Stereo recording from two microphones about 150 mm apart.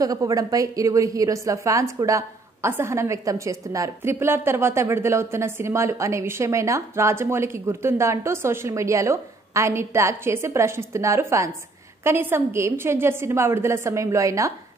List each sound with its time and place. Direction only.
0.0 s a woman's voice: 25° right (ahead or behind)